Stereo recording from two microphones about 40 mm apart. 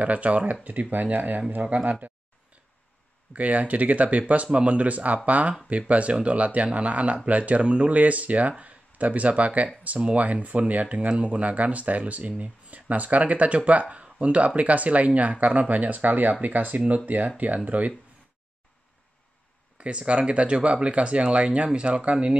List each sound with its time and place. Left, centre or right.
0.0 s speech: right
0.7 s speech: right
3.3 s speech: right
7.9 s speech: right
19.8 s speech: right